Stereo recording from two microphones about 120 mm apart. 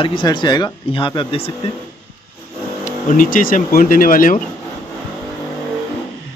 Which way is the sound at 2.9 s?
90° left.